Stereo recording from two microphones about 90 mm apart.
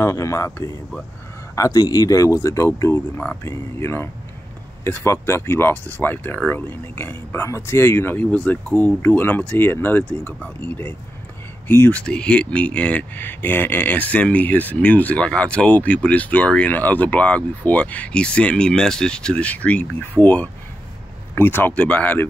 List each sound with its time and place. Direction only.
0.0 s speech: 35° left (ahead or behind); by 22.2 s 15° left (ahead or behind)